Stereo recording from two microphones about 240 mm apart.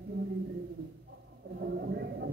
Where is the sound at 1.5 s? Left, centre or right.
Right.